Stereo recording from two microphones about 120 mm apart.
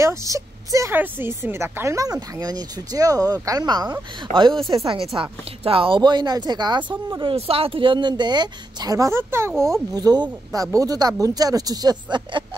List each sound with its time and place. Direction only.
0.0 s a woman's voice: 25° right (ahead or behind)
0.9 s speech: 15° right (ahead or behind); by 4.0 s 35° right (ahead or behind)
4.7 s speech: 50° right (ahead or behind)
7.3 s speech: 55° right (ahead or behind)